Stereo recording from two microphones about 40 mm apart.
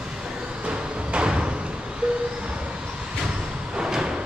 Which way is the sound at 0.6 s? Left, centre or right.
Right.